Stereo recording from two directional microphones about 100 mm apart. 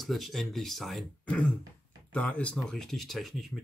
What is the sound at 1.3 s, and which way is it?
Speech, 15° left (ahead or behind).